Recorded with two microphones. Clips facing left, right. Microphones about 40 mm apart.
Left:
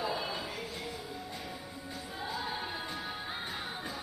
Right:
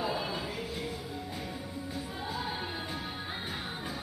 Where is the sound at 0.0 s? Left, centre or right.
Centre.